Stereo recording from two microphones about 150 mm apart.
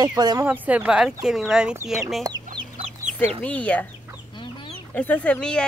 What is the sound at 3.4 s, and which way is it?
Speech, 10° left (ahead or behind).